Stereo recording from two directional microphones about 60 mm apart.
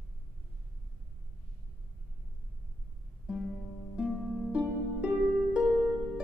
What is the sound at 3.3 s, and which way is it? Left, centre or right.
Music, centre.